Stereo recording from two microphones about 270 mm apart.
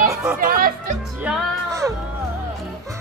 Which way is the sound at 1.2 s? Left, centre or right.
Centre.